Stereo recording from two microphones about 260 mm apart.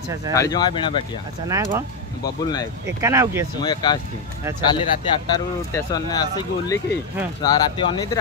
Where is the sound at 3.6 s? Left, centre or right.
Centre.